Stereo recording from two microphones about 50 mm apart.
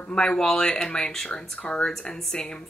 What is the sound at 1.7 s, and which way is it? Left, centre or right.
Speech, centre.